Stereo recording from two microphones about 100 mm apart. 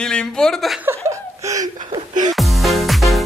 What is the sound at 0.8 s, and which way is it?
Chuckle, 25° right (ahead or behind).